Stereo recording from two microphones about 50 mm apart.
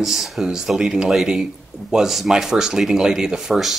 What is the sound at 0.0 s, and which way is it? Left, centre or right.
Speech, centre.